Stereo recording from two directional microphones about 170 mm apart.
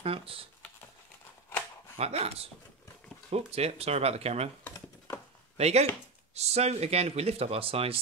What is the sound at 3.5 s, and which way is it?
Speech, 40° right (ahead or behind).